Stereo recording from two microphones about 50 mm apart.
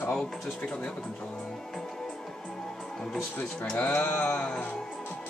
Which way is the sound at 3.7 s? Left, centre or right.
Left.